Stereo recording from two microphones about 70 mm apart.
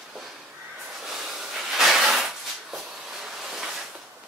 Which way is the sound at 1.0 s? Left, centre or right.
Centre.